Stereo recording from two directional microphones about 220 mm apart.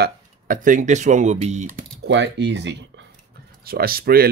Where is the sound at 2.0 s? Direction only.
55° right (ahead or behind).